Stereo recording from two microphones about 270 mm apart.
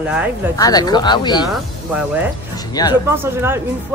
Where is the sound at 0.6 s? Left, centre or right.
Centre.